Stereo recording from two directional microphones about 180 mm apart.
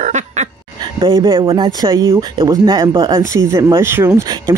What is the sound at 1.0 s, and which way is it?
Speech, 20° right (ahead or behind).